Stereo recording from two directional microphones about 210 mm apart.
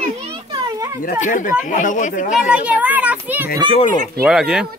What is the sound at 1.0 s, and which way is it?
Speech, 40° left (ahead or behind).